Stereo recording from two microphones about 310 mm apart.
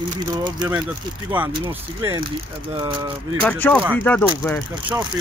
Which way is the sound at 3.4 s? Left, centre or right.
Centre.